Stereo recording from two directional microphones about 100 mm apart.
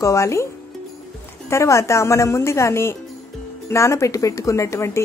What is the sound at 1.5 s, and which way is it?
A woman's voice, 30° left (ahead or behind).